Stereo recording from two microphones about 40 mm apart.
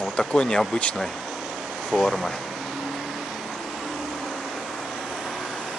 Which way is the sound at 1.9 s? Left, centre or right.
Centre.